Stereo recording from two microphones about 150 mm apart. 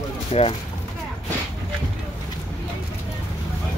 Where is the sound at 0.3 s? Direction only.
40° left (ahead or behind).